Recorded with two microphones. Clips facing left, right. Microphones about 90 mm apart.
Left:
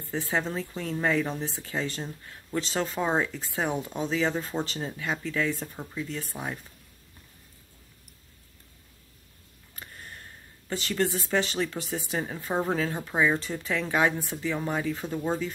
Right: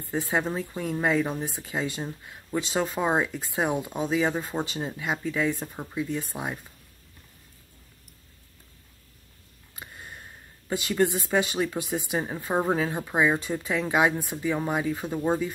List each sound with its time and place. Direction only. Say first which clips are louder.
0.0 s speech: right 2 dB; 15° right (ahead or behind)
9.8 s sniff: right 2 dB; 15° right (ahead or behind)
10.7 s speech: right 3 dB; 15° right (ahead or behind)